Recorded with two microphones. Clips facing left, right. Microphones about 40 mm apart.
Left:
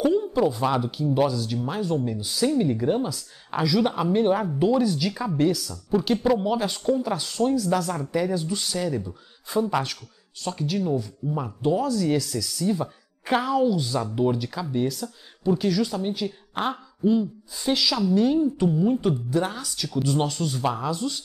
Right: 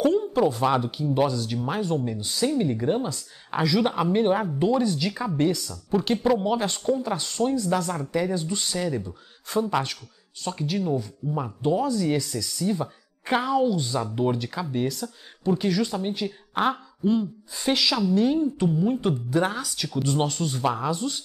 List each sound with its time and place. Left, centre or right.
0.0 s a sound: centre
0.4 s speech: centre
6.2 s speech: centre
7.9 s speech: centre
10.4 s speech: centre
17.2 s speech: right
18.6 s speech: centre
18.9 s speech: centre
20.9 s speech: right